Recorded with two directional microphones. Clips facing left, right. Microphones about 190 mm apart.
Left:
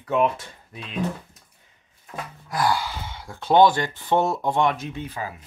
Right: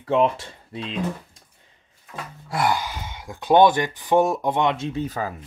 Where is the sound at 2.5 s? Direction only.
20° right (ahead or behind).